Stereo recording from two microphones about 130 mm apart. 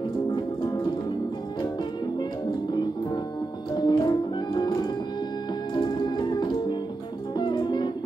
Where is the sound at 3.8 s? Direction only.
35° left (ahead or behind).